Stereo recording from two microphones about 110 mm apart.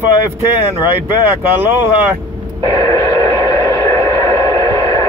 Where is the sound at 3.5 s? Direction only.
30° left (ahead or behind).